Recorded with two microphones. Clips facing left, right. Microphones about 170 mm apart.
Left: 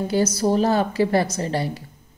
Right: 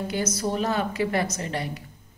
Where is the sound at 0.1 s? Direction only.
35° left (ahead or behind).